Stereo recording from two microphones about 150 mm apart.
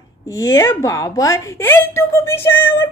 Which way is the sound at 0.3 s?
20° left (ahead or behind).